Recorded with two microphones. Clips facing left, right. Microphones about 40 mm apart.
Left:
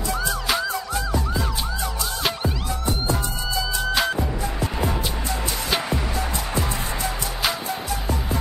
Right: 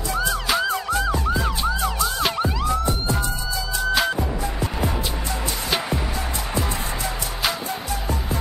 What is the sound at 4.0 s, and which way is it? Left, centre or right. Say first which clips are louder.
Music: right 1 dB; centre.